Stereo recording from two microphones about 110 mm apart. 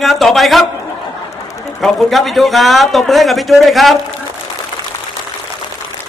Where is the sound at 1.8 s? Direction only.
Centre (ahead or behind).